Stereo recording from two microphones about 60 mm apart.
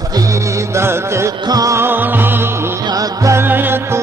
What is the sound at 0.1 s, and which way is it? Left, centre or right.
Music, right.